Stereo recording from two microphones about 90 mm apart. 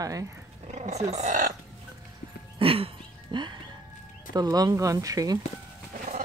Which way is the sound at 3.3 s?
60° right (ahead or behind).